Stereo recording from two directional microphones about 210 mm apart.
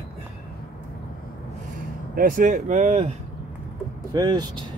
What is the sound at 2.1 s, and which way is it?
Speech, 40° right (ahead or behind).